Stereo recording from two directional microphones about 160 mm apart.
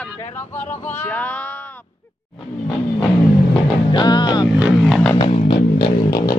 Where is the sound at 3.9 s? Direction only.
25° left (ahead or behind).